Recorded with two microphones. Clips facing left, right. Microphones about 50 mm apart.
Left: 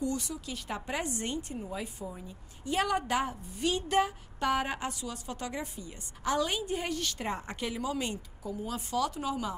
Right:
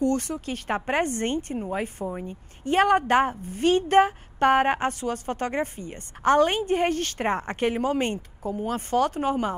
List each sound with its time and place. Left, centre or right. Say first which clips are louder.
0.0 s a woman's voice: right 9 dB; right